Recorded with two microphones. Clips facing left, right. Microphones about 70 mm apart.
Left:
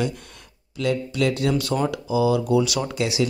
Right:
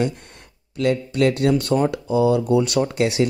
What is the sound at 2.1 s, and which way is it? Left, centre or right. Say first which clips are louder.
A man's voice: right 2 dB; right.